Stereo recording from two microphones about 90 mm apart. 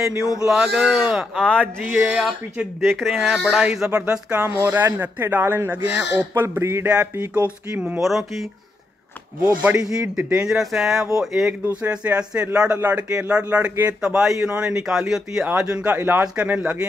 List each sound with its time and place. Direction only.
0.0 s speech: 10° right (ahead or behind)
1.6 s speech: 20° right (ahead or behind)
2.8 s speech: centre (ahead or behind); by 4.5 s 15° right (ahead or behind)
4.6 s speech: 25° right (ahead or behind)
8.0 s speech: centre (ahead or behind)
9.6 s speech: 15° right (ahead or behind)
11.6 s speech: 15° right (ahead or behind)